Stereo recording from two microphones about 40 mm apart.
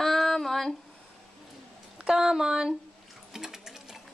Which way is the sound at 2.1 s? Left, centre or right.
Centre.